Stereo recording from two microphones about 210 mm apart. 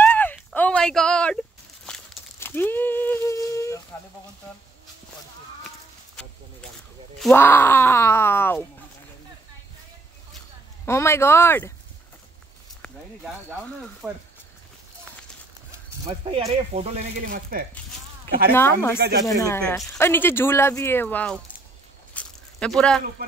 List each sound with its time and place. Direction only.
0.0 s a sound: 10° left (ahead or behind)
7.2 s speech: 5° left (ahead or behind)
10.9 s speech: 10° left (ahead or behind)
14.0 s speech: centre (ahead or behind)
16.1 s speech: 25° right (ahead or behind)
18.5 s speech: 10° left (ahead or behind)
18.9 s speech: 50° right (ahead or behind)
19.2 s speech: 15° left (ahead or behind)
22.1 s a sound: 5° left (ahead or behind)